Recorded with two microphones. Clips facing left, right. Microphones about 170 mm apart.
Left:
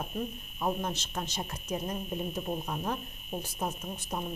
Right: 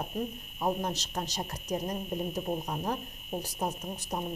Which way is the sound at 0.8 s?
40° right (ahead or behind).